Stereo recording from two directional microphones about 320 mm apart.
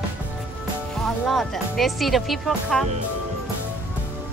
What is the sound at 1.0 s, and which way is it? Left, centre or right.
Speech, centre.